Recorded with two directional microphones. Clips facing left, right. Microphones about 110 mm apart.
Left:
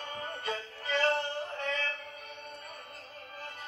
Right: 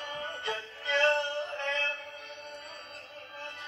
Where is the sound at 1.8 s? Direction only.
25° right (ahead or behind).